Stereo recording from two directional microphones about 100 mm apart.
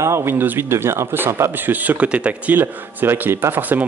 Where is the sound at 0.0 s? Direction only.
25° right (ahead or behind).